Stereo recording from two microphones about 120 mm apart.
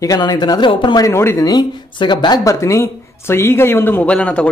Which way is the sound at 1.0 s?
20° left (ahead or behind).